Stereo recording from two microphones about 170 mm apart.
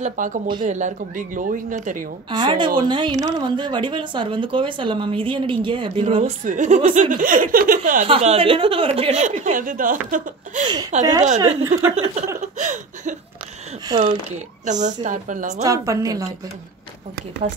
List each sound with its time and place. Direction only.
0.0 s speech: 50° right (ahead or behind)
2.3 s speech: 25° right (ahead or behind)
6.0 s speech: 40° right (ahead or behind)
8.1 s a woman's voice: 35° right (ahead or behind)
12.5 s a sound: 45° right (ahead or behind)
13.8 s speech: 30° right (ahead or behind)
14.3 s speech: 45° right (ahead or behind)
15.6 s speech: 20° right (ahead or behind)